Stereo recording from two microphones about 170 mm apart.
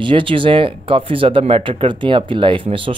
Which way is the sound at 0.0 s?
30° right (ahead or behind).